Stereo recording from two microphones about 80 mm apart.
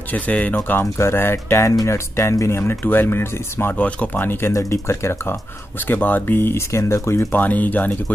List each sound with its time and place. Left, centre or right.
0.1 s speech: centre
0.7 s speech: left
3.7 s speech: centre
4.5 s speech: left
5.9 s speech: left
7.3 s speech: left